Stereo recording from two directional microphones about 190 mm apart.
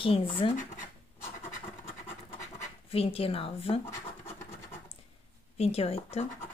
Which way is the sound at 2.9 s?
30° left (ahead or behind).